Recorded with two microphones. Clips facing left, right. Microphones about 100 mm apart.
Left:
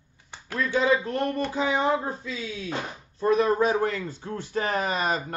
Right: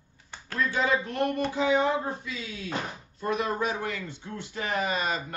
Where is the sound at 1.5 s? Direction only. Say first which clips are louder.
Left 1 dB; 30° left (ahead or behind).